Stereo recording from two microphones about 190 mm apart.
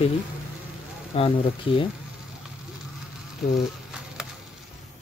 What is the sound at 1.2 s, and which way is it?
Speech, 30° left (ahead or behind).